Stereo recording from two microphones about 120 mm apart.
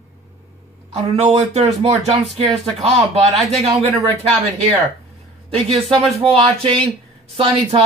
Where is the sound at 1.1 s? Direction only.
60° right (ahead or behind).